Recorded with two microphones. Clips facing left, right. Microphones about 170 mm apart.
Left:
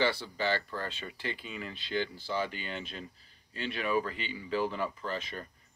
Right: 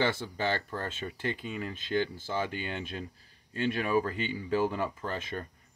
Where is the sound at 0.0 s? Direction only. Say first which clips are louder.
Right 1 dB; 50° right (ahead or behind).